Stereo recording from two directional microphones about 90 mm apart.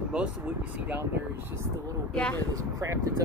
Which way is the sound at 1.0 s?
30° right (ahead or behind).